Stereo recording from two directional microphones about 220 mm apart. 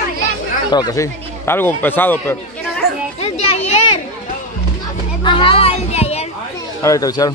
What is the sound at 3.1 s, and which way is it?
Children playing, 30° left (ahead or behind).